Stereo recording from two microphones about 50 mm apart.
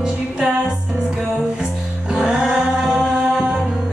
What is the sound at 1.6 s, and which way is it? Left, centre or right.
Music, centre.